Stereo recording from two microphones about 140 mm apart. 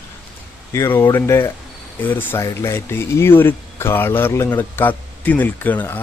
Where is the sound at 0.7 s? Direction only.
20° left (ahead or behind).